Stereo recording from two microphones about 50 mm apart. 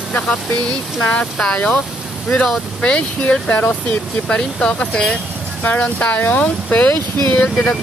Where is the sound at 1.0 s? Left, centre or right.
Centre.